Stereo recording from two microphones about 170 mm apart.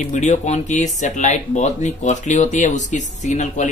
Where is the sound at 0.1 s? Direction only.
45° left (ahead or behind).